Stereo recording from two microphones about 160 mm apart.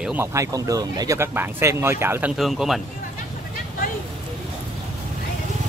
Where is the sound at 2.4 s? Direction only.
Centre (ahead or behind).